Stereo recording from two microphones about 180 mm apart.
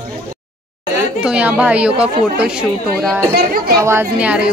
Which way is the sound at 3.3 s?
55° right (ahead or behind).